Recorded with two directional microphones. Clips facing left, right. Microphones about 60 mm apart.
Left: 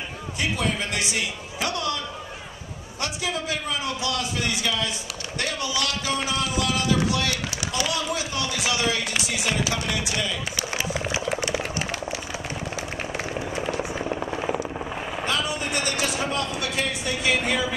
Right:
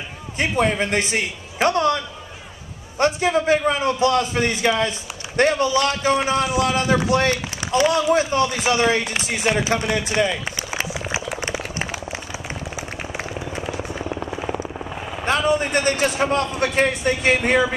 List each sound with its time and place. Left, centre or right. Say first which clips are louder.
0.4 s speech: right 7 dB; right
3.0 s speech: right 10 dB; right
13.7 s helicopter: even; centre
15.2 s a sound: right 9 dB; right
16.2 s speech: right 7 dB; right